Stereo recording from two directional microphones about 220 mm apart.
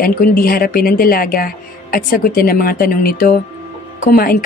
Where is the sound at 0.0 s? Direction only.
40° left (ahead or behind).